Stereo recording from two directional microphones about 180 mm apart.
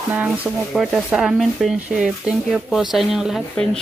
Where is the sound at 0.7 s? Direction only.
5° right (ahead or behind).